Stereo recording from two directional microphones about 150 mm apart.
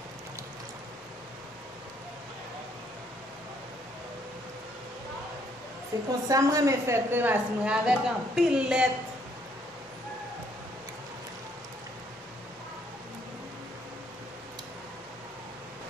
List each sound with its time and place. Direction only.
5.9 s a woman's voice: 20° right (ahead or behind)